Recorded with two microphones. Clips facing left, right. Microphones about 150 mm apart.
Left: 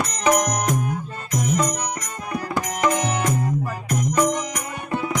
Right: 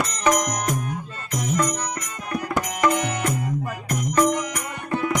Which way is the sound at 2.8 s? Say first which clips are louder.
Even; 15° left (ahead or behind).